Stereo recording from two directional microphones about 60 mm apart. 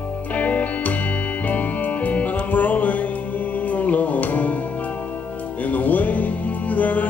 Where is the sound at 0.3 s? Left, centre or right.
Left.